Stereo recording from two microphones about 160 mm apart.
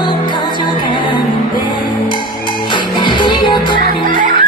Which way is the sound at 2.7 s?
30° left (ahead or behind).